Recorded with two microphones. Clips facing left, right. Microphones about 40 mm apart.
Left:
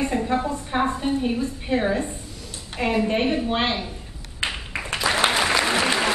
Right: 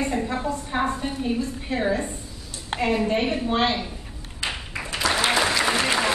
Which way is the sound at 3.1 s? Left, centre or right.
Centre.